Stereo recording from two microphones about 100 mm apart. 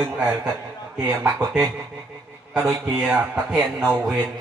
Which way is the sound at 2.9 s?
5° right (ahead or behind).